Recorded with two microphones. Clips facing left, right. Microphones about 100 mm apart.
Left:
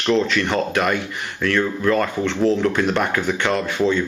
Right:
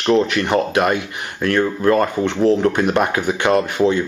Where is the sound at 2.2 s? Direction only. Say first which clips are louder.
Right 2 dB; 15° right (ahead or behind).